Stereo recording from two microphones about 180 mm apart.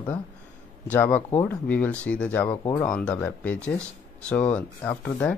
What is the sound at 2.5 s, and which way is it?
Speech, 25° left (ahead or behind).